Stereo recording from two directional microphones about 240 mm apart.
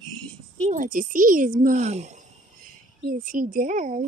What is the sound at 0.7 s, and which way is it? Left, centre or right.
A child's voice, right.